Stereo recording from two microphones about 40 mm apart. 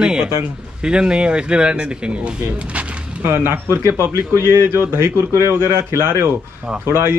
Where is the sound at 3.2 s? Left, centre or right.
Right.